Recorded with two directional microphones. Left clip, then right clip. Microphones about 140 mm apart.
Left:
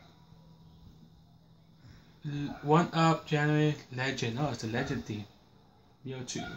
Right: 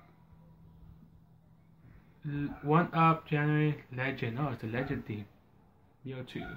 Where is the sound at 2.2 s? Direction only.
5° left (ahead or behind).